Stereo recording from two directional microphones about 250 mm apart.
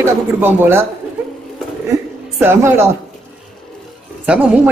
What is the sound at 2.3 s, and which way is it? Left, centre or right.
Speech, centre.